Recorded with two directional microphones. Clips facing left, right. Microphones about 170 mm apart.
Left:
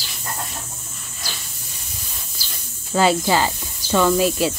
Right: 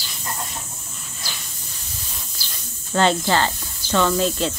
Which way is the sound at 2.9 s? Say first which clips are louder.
Left 1 dB; 5° left (ahead or behind).